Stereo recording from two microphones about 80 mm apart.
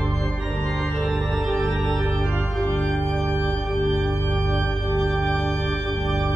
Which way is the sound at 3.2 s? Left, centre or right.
Right.